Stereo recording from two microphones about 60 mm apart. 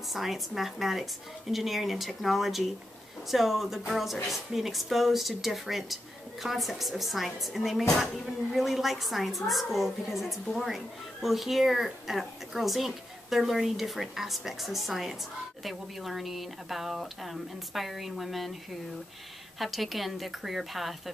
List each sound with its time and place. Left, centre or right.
0.1 s speech: centre
19.6 s speech: centre